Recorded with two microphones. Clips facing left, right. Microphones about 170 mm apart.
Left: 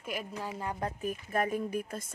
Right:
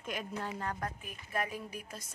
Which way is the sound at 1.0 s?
45° left (ahead or behind).